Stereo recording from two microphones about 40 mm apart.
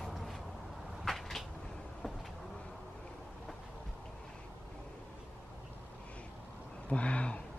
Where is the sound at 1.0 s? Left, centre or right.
Centre.